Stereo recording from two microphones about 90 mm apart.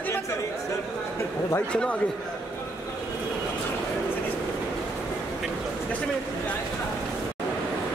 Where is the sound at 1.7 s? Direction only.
10° left (ahead or behind).